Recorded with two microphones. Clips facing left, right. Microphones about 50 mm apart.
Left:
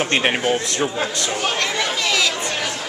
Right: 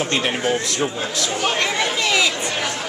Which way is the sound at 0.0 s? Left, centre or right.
Left.